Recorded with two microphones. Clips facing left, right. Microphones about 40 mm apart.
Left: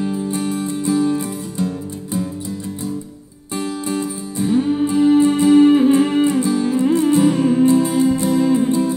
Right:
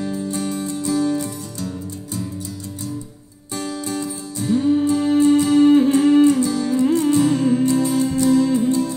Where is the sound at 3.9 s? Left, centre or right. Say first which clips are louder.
Left 3 dB; left.